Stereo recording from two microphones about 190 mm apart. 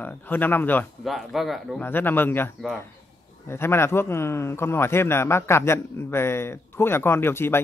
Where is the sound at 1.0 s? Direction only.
Centre (ahead or behind).